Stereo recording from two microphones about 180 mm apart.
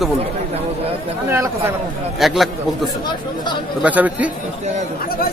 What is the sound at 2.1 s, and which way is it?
A man's voice, centre (ahead or behind).